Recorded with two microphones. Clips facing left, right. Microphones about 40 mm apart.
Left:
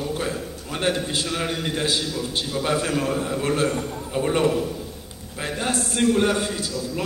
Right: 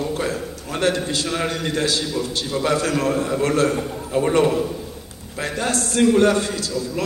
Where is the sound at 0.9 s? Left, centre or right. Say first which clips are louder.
Right 2 dB; left.